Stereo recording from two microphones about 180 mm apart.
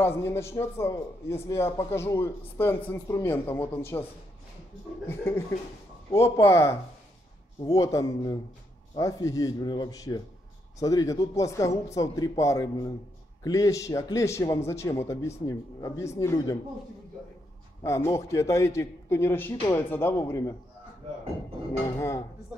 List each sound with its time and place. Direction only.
0.0 s a man's voice: 15° left (ahead or behind)
5.0 s a man's voice: 15° left (ahead or behind)
17.8 s a man's voice: 15° left (ahead or behind)
21.9 s a man's voice: 15° left (ahead or behind)